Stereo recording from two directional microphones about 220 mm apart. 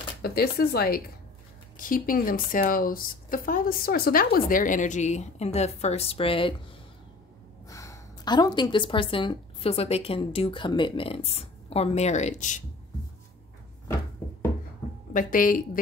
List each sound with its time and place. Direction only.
0.2 s speech: 45° left (ahead or behind); by 6.5 s 25° left (ahead or behind)
7.6 s a woman's voice: 15° left (ahead or behind); by 12.6 s 35° left (ahead or behind)
15.1 s speech: 40° left (ahead or behind)